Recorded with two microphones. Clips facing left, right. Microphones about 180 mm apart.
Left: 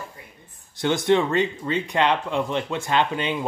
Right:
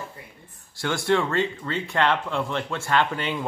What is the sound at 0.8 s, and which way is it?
Speech, 20° left (ahead or behind).